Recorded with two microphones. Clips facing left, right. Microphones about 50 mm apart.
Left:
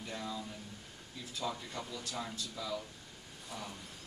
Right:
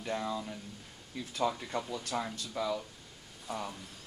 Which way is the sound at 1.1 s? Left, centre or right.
Right.